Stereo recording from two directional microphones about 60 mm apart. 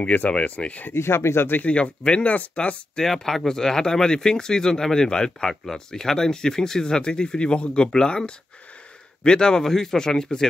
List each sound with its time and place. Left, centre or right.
0.0 s speech: left
0.9 s speech: left
1.6 s speech: centre
3.0 s speech: centre